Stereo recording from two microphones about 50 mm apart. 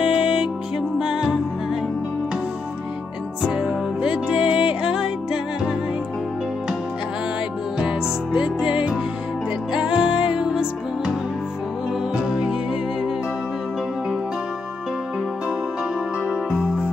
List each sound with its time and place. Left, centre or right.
0.0 s music: centre
3.4 s music: centre
8.3 s music: right
12.2 s music: centre